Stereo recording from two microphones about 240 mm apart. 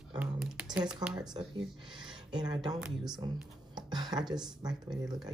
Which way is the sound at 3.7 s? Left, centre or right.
Centre.